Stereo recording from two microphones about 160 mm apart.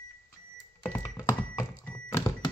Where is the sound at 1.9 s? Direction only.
15° left (ahead or behind).